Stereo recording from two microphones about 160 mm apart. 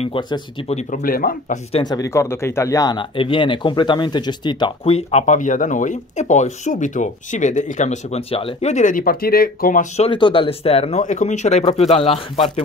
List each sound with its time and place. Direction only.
0.0 s speech: 35° left (ahead or behind)
1.0 s speech: 65° left (ahead or behind)
1.7 s speech: 30° left (ahead or behind); by 9.8 s 60° left (ahead or behind)
9.9 s speech: 35° left (ahead or behind)